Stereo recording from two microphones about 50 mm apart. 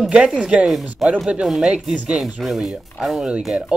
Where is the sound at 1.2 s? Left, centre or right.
Centre.